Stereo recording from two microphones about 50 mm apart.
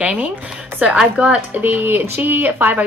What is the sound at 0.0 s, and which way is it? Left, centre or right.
A woman's voice, right.